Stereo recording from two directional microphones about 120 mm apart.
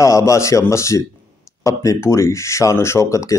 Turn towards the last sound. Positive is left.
turn(degrees=25)  # may be behind; listen again after turning